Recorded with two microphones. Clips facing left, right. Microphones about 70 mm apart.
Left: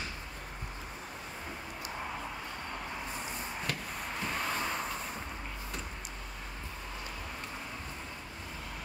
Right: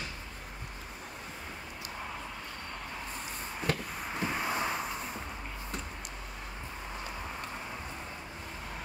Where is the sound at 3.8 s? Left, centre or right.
Centre.